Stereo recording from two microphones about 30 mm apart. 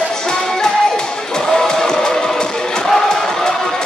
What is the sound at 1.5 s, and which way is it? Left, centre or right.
Music, centre.